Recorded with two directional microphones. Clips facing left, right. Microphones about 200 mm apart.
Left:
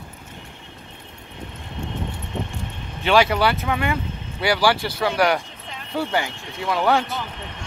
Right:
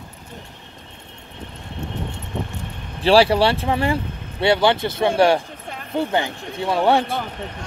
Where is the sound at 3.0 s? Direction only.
30° right (ahead or behind).